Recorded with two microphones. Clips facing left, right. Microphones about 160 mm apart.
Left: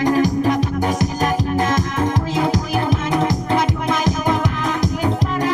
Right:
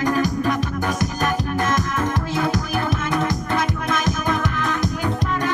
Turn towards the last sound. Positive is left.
turn(degrees=25)  # may be behind; listen again after turning